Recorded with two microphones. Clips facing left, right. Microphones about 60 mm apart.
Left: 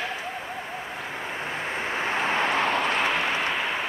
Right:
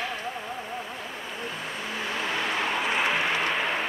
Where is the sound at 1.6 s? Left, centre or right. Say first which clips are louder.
Left 6 dB; left.